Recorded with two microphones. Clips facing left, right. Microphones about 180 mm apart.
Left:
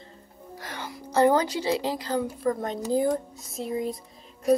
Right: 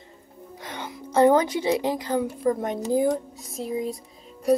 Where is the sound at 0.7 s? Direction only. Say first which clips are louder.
Right 2 dB; 20° right (ahead or behind).